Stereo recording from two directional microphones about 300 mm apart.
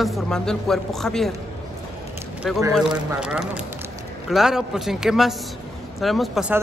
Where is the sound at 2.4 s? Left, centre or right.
Centre.